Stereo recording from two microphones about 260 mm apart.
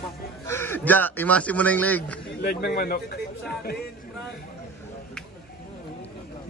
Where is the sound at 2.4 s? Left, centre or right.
Left.